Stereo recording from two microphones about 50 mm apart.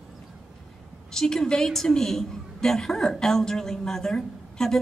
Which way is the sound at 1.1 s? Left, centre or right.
Centre.